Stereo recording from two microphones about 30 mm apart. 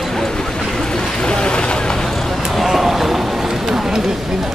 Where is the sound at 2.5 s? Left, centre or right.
Centre.